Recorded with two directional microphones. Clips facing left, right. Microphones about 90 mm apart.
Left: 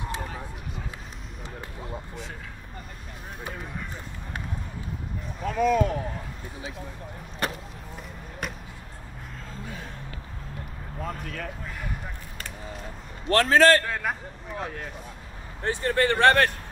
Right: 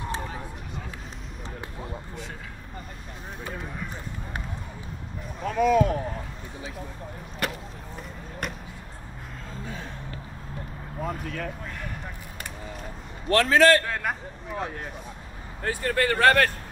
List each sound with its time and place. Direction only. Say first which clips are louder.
5.4 s speech: right 2 dB; centre (ahead or behind)
7.4 s a sound: even; 30° left (ahead or behind)
8.4 s basketball bounce: right 1 dB; centre (ahead or behind)
11.0 s a sound: right 2 dB; 5° right (ahead or behind)
13.3 s speech: even; 35° left (ahead or behind)
13.8 s speech: even; centre (ahead or behind)
15.6 s speech: left 1 dB; 30° left (ahead or behind)